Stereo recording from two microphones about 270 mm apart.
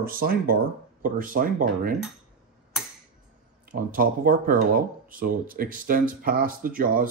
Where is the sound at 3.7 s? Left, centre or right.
Right.